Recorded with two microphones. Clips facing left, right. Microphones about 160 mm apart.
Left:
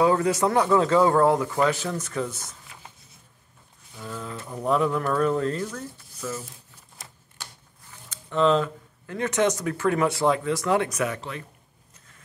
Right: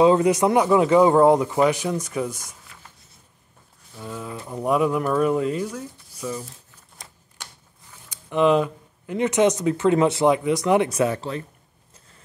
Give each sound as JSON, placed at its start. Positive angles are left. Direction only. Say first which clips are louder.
{"t": 0.0, "sound": "a man's voice", "louder": "right 4 dB", "side_deg": -20}
{"t": 4.0, "sound": "a man's voice", "louder": "right 2 dB", "side_deg": -10}
{"t": 8.1, "sound": "speech", "louder": "right 3 dB", "side_deg": -15}
{"t": 11.0, "sound": "speech", "louder": "right 6 dB", "side_deg": -30}